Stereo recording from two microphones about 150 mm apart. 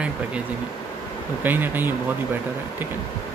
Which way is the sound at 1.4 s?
15° right (ahead or behind).